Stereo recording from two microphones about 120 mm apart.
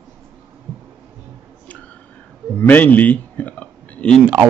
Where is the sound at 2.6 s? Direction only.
15° left (ahead or behind).